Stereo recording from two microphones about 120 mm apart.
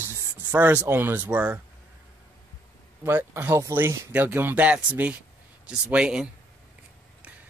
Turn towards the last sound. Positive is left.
turn(degrees=-10)  # may be behind; listen again after turning